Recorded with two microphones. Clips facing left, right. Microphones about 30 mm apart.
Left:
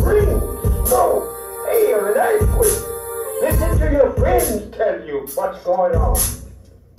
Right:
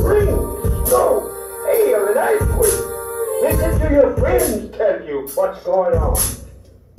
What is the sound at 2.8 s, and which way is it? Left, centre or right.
Music, right.